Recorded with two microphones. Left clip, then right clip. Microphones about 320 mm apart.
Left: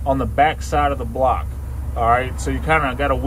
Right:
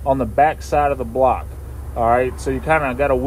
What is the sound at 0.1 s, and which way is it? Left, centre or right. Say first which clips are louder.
Speech: right 1 dB; right.